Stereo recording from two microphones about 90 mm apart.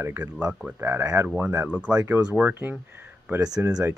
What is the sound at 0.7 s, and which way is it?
Speech, 25° right (ahead or behind).